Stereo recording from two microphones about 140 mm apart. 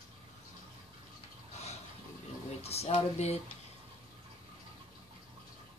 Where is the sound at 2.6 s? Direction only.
45° left (ahead or behind).